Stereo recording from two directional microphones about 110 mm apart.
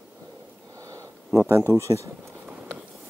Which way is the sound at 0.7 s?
30° right (ahead or behind).